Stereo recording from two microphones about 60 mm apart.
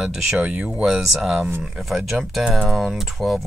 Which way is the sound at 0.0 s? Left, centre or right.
Centre.